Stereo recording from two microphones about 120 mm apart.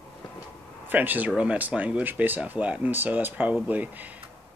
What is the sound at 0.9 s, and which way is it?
Speech, 15° right (ahead or behind).